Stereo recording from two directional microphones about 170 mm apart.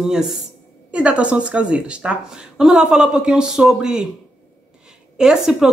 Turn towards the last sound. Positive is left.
turn(degrees=-5)  # may be behind; listen again after turning